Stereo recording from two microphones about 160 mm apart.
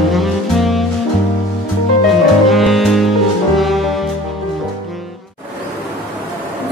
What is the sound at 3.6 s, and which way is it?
Brass instrument, centre (ahead or behind).